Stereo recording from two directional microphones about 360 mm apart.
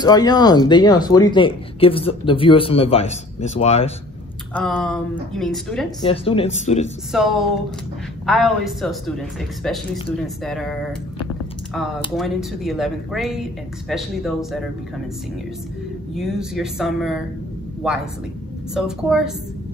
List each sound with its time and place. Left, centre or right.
0.0 s speech: centre
4.6 s a man's voice: centre
6.0 s speech: centre
7.1 s a man's voice: centre
16.2 s a man's voice: centre
18.8 s a man's voice: centre